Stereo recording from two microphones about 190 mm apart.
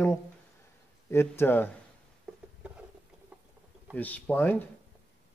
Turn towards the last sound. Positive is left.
turn(degrees=10)  # may be behind; listen again after turning